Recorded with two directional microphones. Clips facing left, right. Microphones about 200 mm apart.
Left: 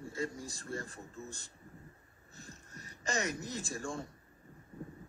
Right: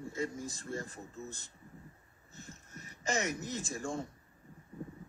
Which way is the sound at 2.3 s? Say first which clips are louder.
Right 2 dB; 20° right (ahead or behind).